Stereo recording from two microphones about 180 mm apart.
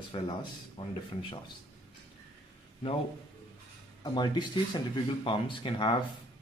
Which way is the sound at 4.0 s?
25° left (ahead or behind).